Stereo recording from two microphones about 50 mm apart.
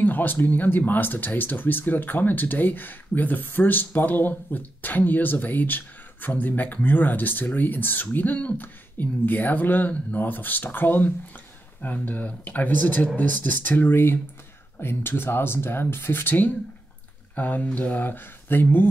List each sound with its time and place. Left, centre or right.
0.0 s speech: left